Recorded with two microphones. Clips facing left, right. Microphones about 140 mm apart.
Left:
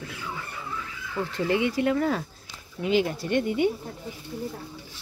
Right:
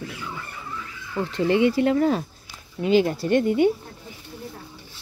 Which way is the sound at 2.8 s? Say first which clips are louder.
Right 5 dB; 40° right (ahead or behind).